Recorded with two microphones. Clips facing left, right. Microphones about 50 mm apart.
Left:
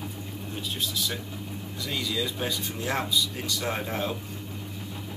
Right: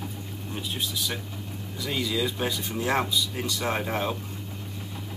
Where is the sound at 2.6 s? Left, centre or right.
Right.